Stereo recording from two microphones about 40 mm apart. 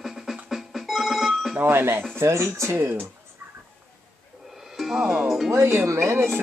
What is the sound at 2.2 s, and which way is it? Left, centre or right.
Speech, right.